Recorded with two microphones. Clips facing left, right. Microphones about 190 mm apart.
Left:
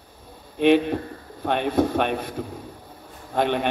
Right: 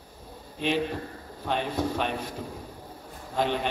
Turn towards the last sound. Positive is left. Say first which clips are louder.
# left 5 dB
turn(degrees=60)  # may be behind; listen again after turning